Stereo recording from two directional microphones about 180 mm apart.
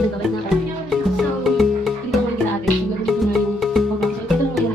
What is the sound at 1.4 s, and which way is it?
Music, centre (ahead or behind).